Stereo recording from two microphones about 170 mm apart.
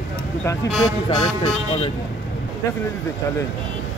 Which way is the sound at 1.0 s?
35° left (ahead or behind).